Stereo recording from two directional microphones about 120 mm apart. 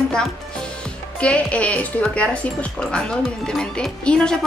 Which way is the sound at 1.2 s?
10° left (ahead or behind).